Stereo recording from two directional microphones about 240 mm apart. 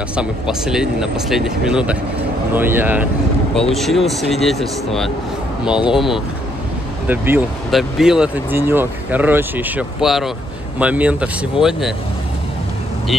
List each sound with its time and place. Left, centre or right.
0.1 s speech: centre
11.6 s speech: left